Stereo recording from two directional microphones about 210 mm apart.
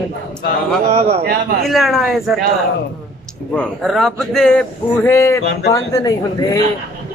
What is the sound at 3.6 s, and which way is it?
A man's voice, centre (ahead or behind).